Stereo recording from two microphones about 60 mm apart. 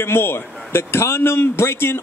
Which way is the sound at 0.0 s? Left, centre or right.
Left.